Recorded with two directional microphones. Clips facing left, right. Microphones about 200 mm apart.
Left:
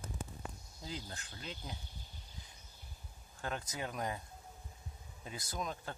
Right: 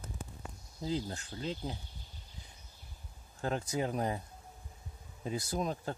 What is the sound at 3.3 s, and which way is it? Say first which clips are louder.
Speech: right 7 dB; 30° right (ahead or behind).